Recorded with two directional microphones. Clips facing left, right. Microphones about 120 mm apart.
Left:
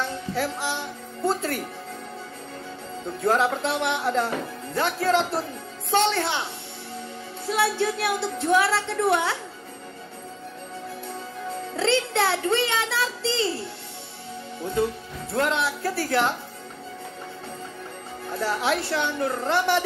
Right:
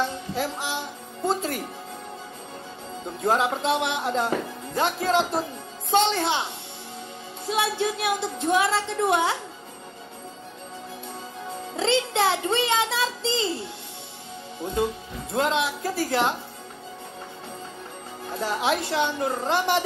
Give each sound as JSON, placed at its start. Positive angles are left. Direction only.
{"t": 0.0, "sound": "music", "side_deg": -20}
{"t": 3.2, "sound": "speech", "side_deg": -20}
{"t": 7.4, "sound": "speech", "side_deg": -20}
{"t": 11.7, "sound": "speech", "side_deg": -20}
{"t": 18.3, "sound": "speech", "side_deg": -20}